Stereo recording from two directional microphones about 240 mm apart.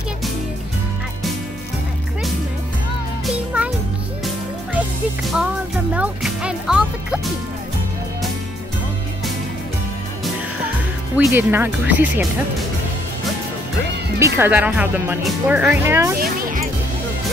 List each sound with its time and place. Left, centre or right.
3.3 s music: centre
5.9 s music: centre
11.1 s speech: centre
14.2 s speech: centre
16.2 s speech: right